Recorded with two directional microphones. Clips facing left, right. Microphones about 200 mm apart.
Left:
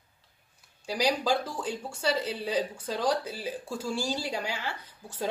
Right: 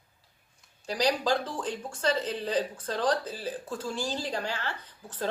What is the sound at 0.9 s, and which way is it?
A man's voice, 10° left (ahead or behind).